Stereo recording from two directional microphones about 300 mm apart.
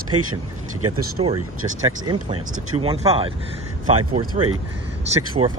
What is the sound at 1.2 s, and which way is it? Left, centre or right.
Speech, centre.